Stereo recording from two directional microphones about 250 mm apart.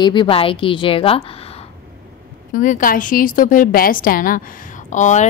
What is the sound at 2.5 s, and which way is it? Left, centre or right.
A woman's voice, left.